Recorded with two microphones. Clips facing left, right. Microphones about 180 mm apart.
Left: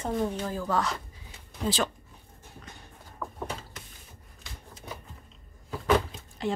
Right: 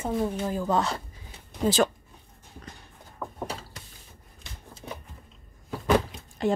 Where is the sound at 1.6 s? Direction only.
45° right (ahead or behind).